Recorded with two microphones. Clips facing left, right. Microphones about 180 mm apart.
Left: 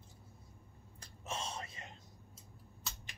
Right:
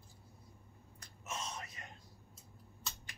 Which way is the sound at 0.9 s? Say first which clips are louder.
Left 2 dB; 30° left (ahead or behind).